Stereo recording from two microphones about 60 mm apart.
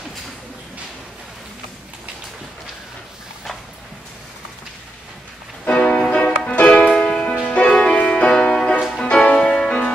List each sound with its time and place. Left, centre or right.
5.7 s music: centre